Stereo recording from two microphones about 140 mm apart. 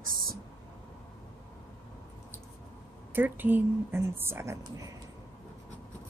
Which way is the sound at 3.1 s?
15° right (ahead or behind).